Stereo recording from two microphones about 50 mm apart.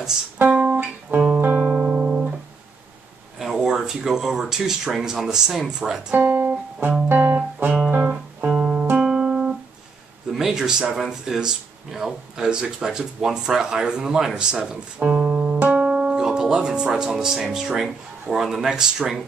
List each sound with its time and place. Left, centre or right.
0.4 s music: right
1.6 s music: centre
3.3 s speech: centre
6.2 s music: right
6.8 s music: right
8.5 s music: centre
10.3 s speech: centre
15.0 s music: right
16.0 s speech: centre